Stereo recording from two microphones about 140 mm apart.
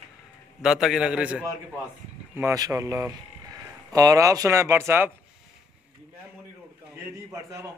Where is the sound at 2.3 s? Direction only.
20° right (ahead or behind).